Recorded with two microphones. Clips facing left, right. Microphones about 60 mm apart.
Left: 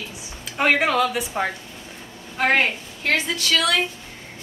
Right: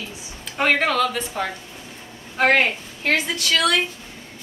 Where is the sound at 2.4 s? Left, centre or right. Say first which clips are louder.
Right 2 dB; centre.